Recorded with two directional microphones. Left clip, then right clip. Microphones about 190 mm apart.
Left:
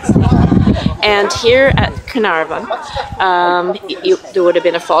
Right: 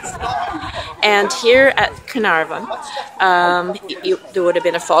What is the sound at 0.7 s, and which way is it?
A woman's voice, 5° left (ahead or behind).